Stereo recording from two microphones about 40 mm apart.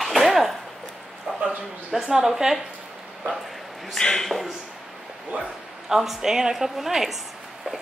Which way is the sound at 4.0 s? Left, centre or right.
Centre.